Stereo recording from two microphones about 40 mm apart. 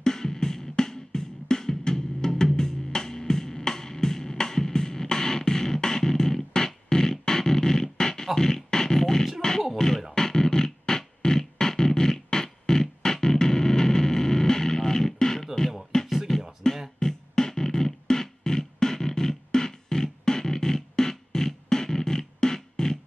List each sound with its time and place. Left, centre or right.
0.0 s music: centre
8.4 s a sound: centre
9.8 s music: centre